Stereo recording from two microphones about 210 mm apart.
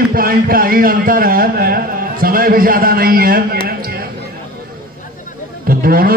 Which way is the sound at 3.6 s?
45° right (ahead or behind).